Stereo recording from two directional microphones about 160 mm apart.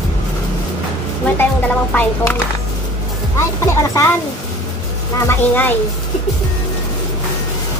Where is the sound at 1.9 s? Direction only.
10° left (ahead or behind).